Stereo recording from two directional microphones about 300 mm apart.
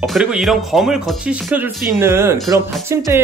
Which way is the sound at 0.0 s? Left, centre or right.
Centre.